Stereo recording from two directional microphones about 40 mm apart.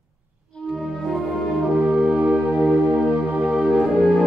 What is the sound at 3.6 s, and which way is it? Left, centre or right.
Music, centre.